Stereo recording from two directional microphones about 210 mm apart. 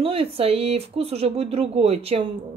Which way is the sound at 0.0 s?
25° right (ahead or behind).